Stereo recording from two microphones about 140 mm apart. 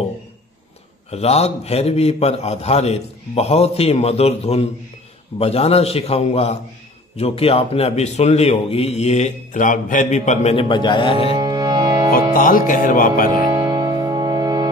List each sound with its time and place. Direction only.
1.1 s a man's voice: 50° left (ahead or behind)
10.5 s speech: 35° left (ahead or behind)
11.3 s music: 30° right (ahead or behind)
12.1 s speech: 80° left
13.3 s music: 30° right (ahead or behind)